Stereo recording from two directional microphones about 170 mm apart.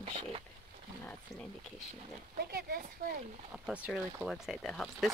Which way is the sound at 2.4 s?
65° right (ahead or behind).